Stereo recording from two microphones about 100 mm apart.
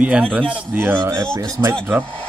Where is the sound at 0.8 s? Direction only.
25° right (ahead or behind).